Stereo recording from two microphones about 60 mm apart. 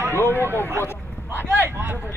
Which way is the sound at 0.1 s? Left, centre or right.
Left.